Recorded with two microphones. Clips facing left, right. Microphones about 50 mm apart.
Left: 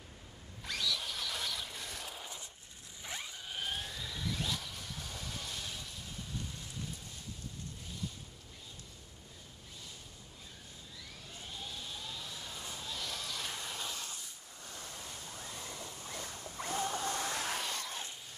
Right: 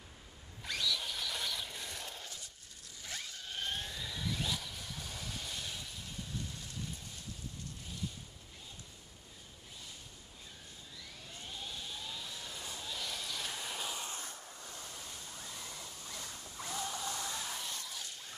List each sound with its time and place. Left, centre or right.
0.7 s a sound: centre
3.0 s zipper: centre
11.5 s vehicle: centre
14.8 s waterfall: centre
15.8 s rodents: left
16.6 s a sound: left